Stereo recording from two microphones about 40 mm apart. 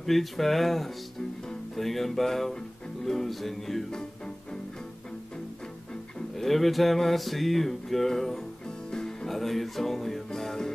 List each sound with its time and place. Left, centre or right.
0.0 s music: centre
6.3 s music: centre